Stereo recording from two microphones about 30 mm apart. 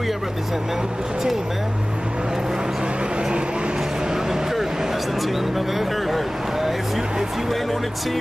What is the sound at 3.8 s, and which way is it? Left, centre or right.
Vehicle, centre.